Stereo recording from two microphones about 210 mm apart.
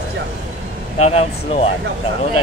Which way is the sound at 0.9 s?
30° left (ahead or behind).